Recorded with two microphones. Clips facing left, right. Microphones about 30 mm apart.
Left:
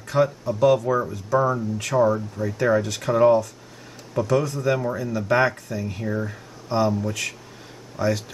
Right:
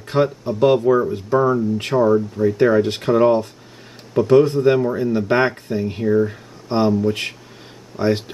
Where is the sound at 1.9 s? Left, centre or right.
Centre.